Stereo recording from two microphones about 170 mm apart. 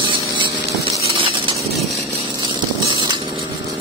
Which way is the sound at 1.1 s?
30° right (ahead or behind).